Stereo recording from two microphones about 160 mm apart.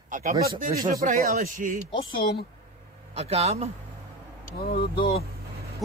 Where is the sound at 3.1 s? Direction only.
40° right (ahead or behind).